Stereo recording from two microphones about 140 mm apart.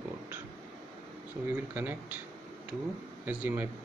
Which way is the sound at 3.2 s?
10° right (ahead or behind).